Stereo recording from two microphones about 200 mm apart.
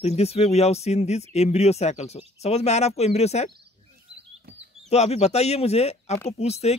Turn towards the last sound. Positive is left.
turn(degrees=30)  # may be behind; listen again after turning